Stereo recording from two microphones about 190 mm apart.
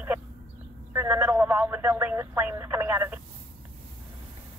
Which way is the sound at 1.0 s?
10° right (ahead or behind).